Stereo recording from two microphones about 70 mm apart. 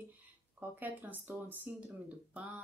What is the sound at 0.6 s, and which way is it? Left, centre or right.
Speech, right.